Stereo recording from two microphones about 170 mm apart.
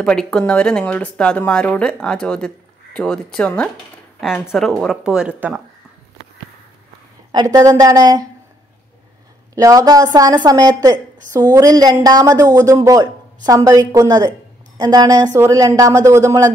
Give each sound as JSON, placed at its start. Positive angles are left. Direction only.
{"t": 0.0, "sound": "speech", "side_deg": 5}
{"t": 7.3, "sound": "a woman's voice", "side_deg": -20}
{"t": 9.6, "sound": "a woman's voice", "side_deg": -20}